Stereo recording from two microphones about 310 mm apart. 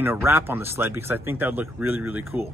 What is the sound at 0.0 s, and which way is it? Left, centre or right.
Speech, centre.